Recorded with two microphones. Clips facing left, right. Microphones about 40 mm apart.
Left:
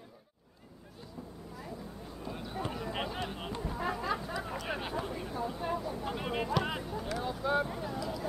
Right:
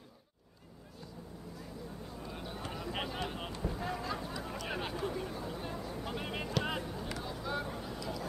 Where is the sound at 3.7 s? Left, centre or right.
Left.